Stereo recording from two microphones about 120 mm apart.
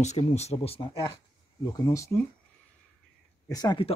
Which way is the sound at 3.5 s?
35° left (ahead or behind).